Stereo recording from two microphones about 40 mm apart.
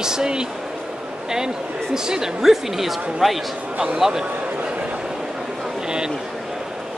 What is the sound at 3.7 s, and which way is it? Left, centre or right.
Speech, centre.